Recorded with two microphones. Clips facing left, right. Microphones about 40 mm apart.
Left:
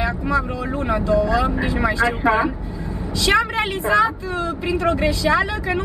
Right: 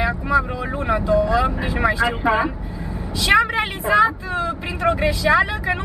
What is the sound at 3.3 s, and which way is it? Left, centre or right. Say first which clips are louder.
A woman's voice: right 2 dB; centre.